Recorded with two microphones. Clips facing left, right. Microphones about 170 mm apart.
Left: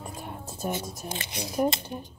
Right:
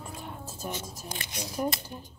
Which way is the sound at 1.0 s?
20° left (ahead or behind).